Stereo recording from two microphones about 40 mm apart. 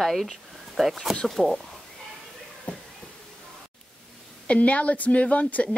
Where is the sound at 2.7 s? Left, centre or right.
Left.